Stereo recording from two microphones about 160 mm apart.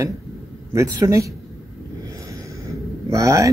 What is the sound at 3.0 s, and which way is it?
Speech, 20° right (ahead or behind).